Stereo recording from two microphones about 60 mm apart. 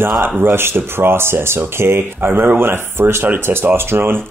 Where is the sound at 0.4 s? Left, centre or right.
Right.